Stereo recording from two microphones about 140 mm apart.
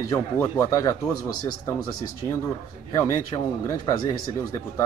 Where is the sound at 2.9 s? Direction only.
20° left (ahead or behind).